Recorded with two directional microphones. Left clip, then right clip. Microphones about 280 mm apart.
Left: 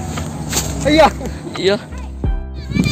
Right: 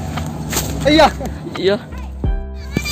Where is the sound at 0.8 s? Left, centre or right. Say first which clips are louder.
Even; right.